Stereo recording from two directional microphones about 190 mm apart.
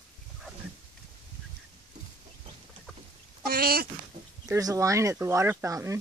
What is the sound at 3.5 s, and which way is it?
Speech, 50° right (ahead or behind).